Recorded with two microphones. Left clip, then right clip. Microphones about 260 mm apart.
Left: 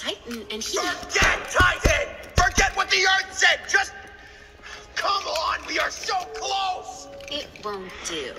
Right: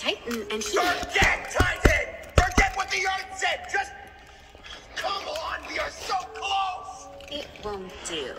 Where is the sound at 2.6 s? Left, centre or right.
Left.